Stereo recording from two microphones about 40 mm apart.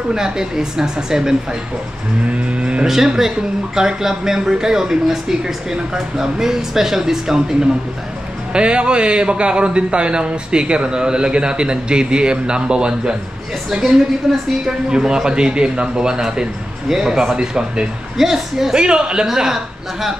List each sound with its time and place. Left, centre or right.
0.1 s speech: centre
2.3 s a man's voice: right
2.9 s speech: centre
8.5 s a man's voice: right
13.7 s a man's voice: centre
18.1 s speech: centre
18.8 s a man's voice: right
19.2 s speech: centre